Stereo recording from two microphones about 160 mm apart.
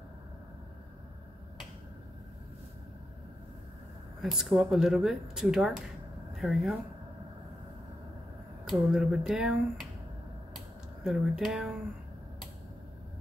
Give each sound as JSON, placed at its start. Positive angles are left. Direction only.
{"t": 4.2, "sound": "speech", "side_deg": 0}
{"t": 8.6, "sound": "speech", "side_deg": 0}
{"t": 11.1, "sound": "speech", "side_deg": -5}